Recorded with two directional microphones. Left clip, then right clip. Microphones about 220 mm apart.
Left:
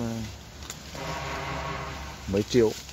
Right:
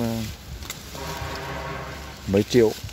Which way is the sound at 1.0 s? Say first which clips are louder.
Right 1 dB; 45° left (ahead or behind).